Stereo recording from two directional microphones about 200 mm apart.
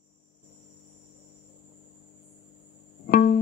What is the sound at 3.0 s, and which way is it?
Music, 45° left (ahead or behind).